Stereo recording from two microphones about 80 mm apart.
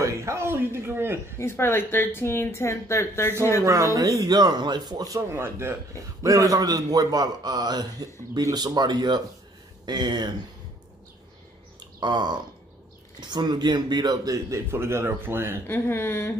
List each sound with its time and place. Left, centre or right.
0.0 s speech: right
1.4 s speech: left
3.6 s speech: right
4.3 s a man's voice: right
5.3 s speech: right
6.2 s a man's voice: right
12.0 s a man's voice: right
14.7 s speech: right
15.6 s speech: left